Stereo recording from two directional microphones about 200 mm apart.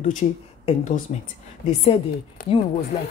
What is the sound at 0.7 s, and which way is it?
Speech, 40° left (ahead or behind).